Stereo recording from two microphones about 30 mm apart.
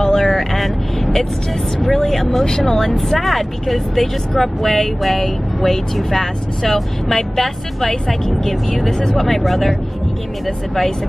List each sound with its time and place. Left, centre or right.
0.0 s vehicle: centre
1.9 s speech: centre
2.4 s speech: left
3.1 s speech: centre